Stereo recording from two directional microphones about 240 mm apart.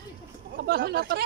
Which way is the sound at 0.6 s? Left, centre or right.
Right.